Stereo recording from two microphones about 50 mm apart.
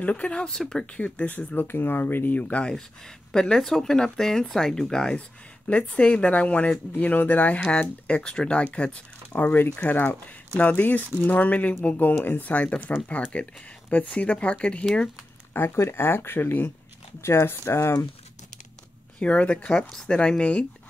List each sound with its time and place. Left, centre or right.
0.0 s speech: left
0.5 s speech: centre
0.9 s speech: left
1.7 s speech: left
3.3 s speech: centre
5.7 s speech: left
8.2 s speech: centre
9.8 s speech: left
15.5 s speech: left
17.2 s speech: left
19.1 s speech: left
19.9 s speech: centre